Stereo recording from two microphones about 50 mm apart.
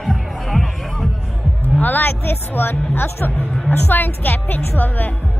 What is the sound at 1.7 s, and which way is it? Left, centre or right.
A woman's voice, left.